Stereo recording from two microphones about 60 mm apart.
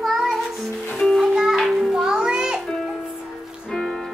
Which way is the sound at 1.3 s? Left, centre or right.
Centre.